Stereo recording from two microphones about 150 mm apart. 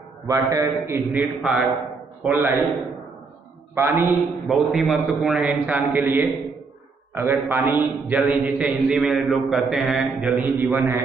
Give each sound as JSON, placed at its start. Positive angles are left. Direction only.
{"t": 0.3, "sound": "a man's voice", "side_deg": -20}
{"t": 2.2, "sound": "a man's voice", "side_deg": -15}
{"t": 3.7, "sound": "a man's voice", "side_deg": -15}
{"t": 4.2, "sound": "a man's voice", "side_deg": 0}
{"t": 7.4, "sound": "a man's voice", "side_deg": -15}
{"t": 10.3, "sound": "a man's voice", "side_deg": -15}